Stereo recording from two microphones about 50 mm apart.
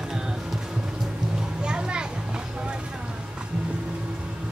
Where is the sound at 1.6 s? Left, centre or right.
Centre.